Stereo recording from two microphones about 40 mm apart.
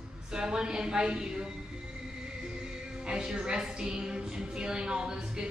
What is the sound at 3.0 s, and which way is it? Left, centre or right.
A woman's voice, right.